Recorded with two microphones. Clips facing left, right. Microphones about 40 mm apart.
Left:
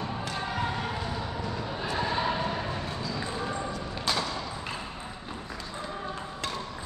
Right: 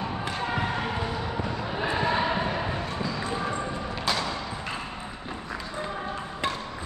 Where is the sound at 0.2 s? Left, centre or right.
Right.